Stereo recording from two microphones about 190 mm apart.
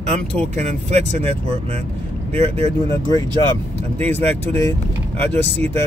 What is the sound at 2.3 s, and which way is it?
Speech, 35° right (ahead or behind).